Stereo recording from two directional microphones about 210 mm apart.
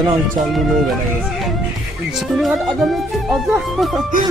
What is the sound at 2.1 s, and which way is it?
Music, centre (ahead or behind).